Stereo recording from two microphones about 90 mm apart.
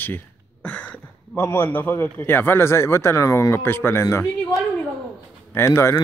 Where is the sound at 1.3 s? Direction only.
25° left (ahead or behind).